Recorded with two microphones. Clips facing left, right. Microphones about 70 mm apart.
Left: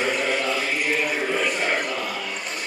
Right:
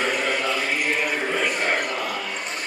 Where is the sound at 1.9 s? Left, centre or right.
Centre.